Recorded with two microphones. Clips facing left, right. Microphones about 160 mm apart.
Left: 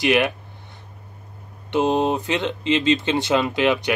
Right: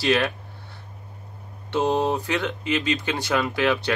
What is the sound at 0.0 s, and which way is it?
Speech, 15° left (ahead or behind).